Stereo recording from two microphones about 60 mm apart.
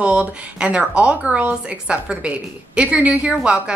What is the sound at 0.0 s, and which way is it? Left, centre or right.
A woman's voice, centre.